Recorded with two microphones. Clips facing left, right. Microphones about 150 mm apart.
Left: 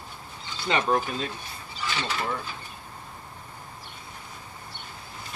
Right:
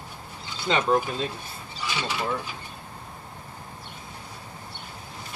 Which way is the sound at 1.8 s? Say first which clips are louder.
Right 1 dB; 10° right (ahead or behind).